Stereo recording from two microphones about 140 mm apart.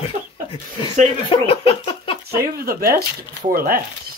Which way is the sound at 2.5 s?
90° right.